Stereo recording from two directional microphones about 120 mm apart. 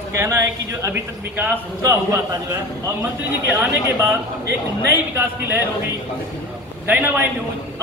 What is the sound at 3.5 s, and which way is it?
Speech, 15° right (ahead or behind).